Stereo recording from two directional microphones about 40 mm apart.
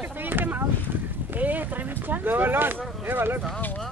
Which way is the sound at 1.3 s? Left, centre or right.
Right.